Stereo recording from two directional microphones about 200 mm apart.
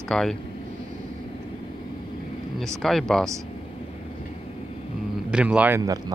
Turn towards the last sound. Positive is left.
turn(degrees=-15)  # may be behind; listen again after turning